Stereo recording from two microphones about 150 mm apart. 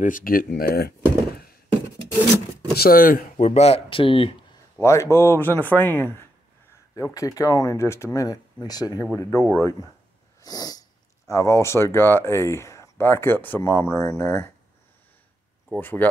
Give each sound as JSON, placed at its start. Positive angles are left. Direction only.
{"t": 0.0, "sound": "speech", "side_deg": 65}
{"t": 2.7, "sound": "speech", "side_deg": 80}
{"t": 3.4, "sound": "speech", "side_deg": 45}
{"t": 4.7, "sound": "speech", "side_deg": 20}
{"t": 15.7, "sound": "speech", "side_deg": 10}